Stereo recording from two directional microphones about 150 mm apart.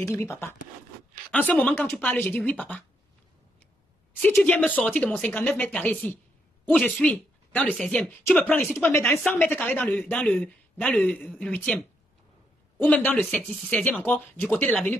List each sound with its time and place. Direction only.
0.0 s speech: 20° left (ahead or behind)
4.2 s speech: 10° left (ahead or behind)
8.7 s speech: 20° left (ahead or behind)